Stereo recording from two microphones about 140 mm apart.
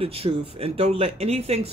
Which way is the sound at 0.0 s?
45° right (ahead or behind).